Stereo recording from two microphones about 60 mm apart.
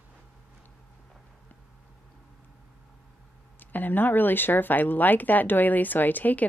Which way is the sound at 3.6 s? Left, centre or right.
Left.